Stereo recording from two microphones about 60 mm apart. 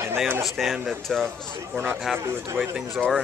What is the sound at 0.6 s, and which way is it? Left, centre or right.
Speech, centre.